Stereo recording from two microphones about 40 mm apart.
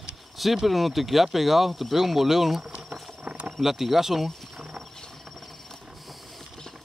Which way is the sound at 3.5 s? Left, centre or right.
Centre.